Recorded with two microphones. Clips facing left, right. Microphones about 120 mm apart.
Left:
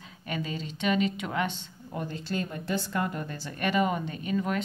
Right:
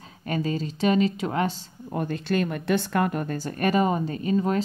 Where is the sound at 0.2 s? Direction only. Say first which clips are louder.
Right 7 dB; 40° right (ahead or behind).